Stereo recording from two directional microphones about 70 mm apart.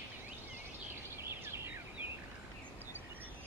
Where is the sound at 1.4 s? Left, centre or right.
Right.